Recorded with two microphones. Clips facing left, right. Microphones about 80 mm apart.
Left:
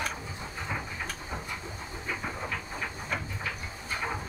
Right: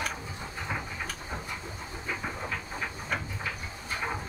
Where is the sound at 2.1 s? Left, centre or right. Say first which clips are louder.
Even; centre.